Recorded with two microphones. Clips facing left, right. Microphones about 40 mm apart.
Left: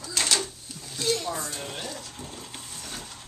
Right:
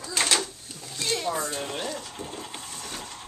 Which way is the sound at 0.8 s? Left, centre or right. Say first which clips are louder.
Left 4 dB; centre.